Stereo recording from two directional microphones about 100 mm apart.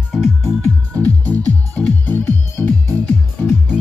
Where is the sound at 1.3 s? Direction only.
15° left (ahead or behind).